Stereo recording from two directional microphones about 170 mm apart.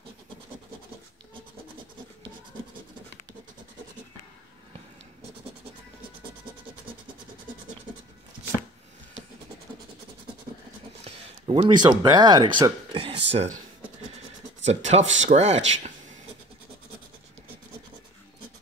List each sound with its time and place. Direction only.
11.1 s speech: 35° right (ahead or behind)
14.6 s speech: 40° right (ahead or behind)